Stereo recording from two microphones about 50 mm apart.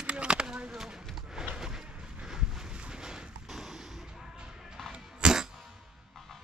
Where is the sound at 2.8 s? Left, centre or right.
Centre.